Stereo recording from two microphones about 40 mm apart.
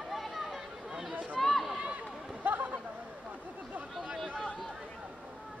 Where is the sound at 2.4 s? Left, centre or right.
Right.